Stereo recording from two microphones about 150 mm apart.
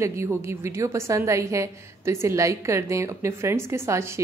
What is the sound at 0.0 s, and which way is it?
A woman's voice, 20° right (ahead or behind).